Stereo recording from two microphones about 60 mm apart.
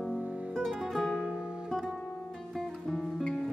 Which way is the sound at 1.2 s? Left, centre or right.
Centre.